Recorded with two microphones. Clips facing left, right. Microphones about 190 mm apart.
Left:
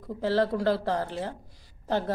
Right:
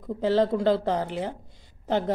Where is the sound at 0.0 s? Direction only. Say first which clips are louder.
Right 3 dB; 20° right (ahead or behind).